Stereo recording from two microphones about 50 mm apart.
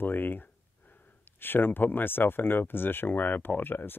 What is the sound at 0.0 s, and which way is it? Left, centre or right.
Speech, left.